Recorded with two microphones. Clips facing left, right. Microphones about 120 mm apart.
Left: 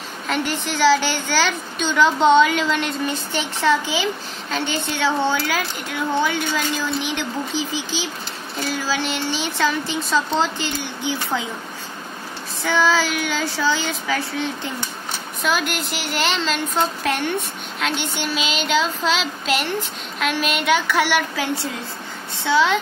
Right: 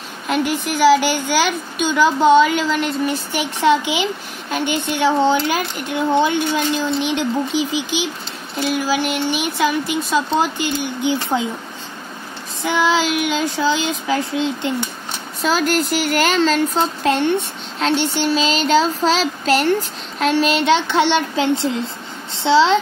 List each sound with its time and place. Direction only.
0.3 s a woman's voice: 10° right (ahead or behind)
3.6 s a woman's voice: 15° right (ahead or behind)
12.6 s a woman's voice: 15° right (ahead or behind)
15.4 s speech: 35° right (ahead or behind)
17.0 s speech: 25° right (ahead or behind)